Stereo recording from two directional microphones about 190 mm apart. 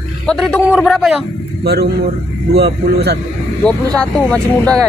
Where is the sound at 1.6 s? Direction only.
60° right (ahead or behind).